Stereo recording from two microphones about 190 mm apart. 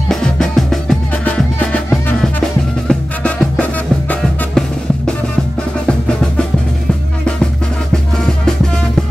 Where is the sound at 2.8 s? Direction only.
5° left (ahead or behind).